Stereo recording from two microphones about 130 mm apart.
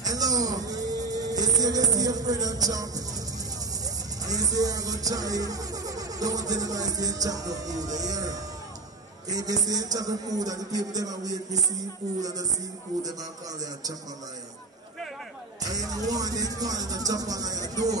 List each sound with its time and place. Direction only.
0.0 s music: 30° right (ahead or behind)
15.6 s music: 30° right (ahead or behind)